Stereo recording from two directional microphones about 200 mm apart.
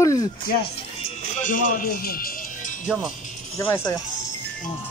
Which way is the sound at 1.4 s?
40° left (ahead or behind).